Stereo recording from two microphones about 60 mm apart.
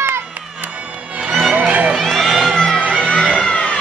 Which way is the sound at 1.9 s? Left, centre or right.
Centre.